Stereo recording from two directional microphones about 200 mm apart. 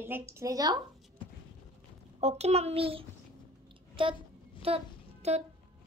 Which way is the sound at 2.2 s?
35° right (ahead or behind).